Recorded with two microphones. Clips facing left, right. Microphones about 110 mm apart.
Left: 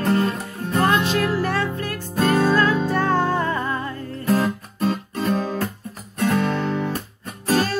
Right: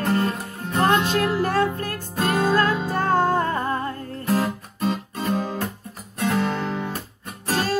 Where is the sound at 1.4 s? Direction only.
45° right (ahead or behind).